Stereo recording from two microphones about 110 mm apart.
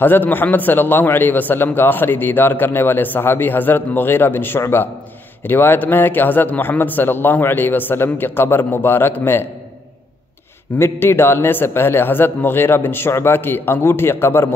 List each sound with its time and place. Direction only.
0.0 s a man's voice: 15° left (ahead or behind)
10.8 s a man's voice: 20° left (ahead or behind)